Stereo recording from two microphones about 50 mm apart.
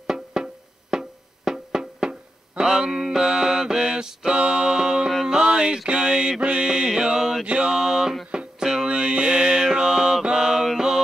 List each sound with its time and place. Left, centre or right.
0.0 s music: centre
5.3 s a sound: centre
5.9 s mantra: centre
7.4 s mantra: right
7.7 s a sound: centre
8.3 s music: centre
8.8 s mantra: centre